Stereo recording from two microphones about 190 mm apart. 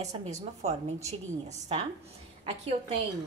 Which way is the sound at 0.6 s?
35° right (ahead or behind).